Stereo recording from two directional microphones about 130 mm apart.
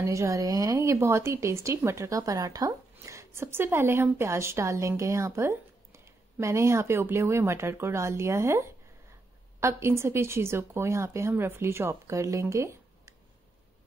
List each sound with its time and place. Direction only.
0.0 s a woman's voice: 25° right (ahead or behind)